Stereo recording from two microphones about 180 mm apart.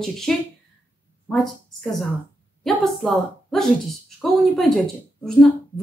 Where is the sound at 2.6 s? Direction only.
Centre (ahead or behind).